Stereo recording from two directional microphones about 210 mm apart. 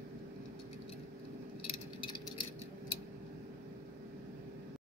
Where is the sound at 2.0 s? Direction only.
25° left (ahead or behind).